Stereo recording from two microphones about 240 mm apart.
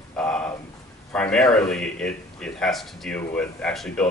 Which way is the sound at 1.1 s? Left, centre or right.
Centre.